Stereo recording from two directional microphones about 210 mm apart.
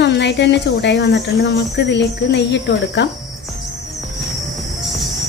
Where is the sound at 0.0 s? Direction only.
55° left (ahead or behind).